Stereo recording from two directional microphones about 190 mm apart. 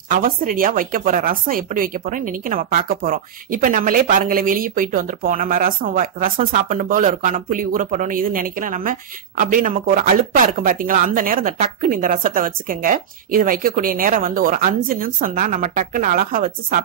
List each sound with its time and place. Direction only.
0.1 s speech: 45° right (ahead or behind)